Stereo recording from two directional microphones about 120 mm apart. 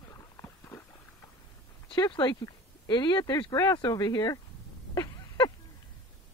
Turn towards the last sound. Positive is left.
turn(degrees=35)  # may be behind; listen again after turning